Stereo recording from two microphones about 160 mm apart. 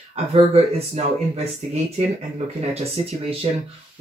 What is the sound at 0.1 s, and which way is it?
Speech, 40° right (ahead or behind).